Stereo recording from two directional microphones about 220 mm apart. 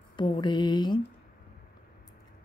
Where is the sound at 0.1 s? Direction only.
20° left (ahead or behind).